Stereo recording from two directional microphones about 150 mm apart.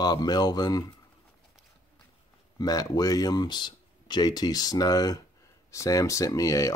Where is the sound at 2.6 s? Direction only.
25° left (ahead or behind).